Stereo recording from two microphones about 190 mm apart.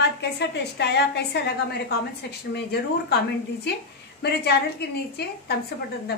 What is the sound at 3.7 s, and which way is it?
A woman's voice, 60° left (ahead or behind).